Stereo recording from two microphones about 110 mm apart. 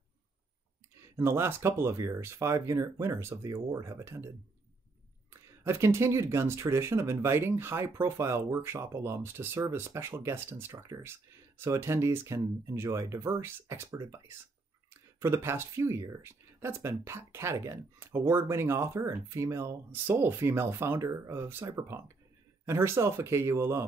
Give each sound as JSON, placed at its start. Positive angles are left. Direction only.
{"t": 1.1, "sound": "speech", "side_deg": -20}
{"t": 5.3, "sound": "speech", "side_deg": -25}